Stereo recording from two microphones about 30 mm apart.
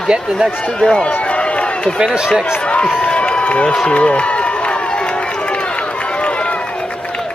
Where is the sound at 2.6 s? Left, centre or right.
Left.